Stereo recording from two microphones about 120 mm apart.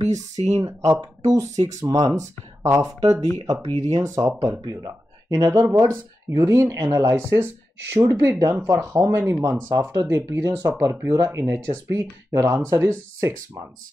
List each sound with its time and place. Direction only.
0.1 s speech: 70° right (ahead or behind)
0.6 s speech: 25° right (ahead or behind)